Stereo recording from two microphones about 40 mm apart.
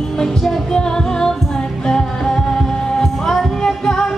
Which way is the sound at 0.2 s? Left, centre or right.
Centre.